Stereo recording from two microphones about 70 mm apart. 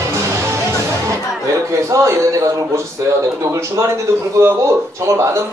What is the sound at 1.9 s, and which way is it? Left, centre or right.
Speech, right.